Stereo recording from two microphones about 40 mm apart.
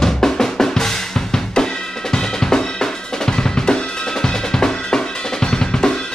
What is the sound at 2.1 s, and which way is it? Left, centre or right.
Drum kit, centre.